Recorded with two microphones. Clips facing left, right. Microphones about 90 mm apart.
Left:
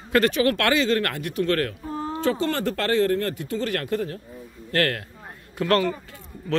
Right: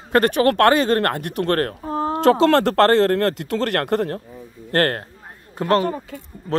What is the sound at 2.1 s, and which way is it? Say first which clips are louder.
Speech: right 10 dB; 85° right.